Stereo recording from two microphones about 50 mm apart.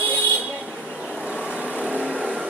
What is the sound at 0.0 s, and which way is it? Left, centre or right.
Vehicle, left.